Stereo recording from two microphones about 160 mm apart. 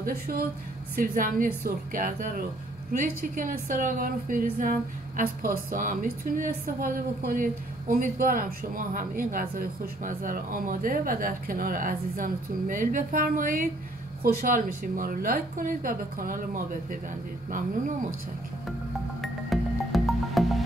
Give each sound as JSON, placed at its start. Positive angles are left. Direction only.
{"t": 0.0, "sound": "a woman's voice", "side_deg": -70}
{"t": 19.2, "sound": "music", "side_deg": 0}